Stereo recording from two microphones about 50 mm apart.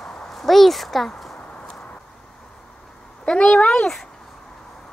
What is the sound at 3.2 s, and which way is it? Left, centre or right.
Speech, left.